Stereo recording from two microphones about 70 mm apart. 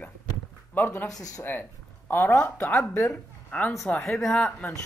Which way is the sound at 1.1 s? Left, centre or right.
Left.